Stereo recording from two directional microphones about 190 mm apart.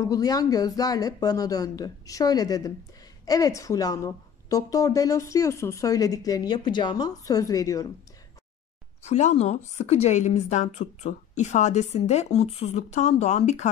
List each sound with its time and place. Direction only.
0.0 s a woman's voice: 20° left (ahead or behind)
9.0 s a woman's voice: 35° left (ahead or behind)